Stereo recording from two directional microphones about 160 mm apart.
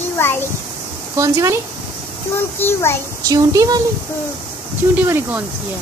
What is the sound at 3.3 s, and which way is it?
Speech, 20° right (ahead or behind).